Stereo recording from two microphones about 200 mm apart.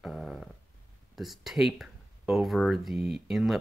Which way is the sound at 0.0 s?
Centre (ahead or behind).